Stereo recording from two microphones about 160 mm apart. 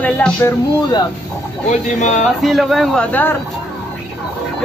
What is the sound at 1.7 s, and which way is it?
Speech, 50° left (ahead or behind).